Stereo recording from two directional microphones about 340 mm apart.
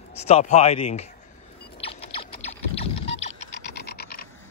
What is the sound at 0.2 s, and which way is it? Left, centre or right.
Speech, centre.